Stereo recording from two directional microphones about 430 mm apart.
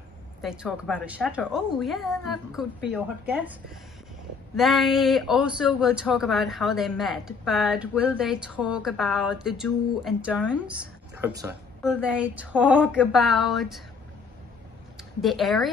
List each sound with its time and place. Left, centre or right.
0.4 s speech: centre
4.6 s speech: centre
15.2 s speech: centre